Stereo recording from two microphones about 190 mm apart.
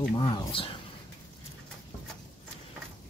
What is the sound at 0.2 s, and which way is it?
Speech, 25° left (ahead or behind).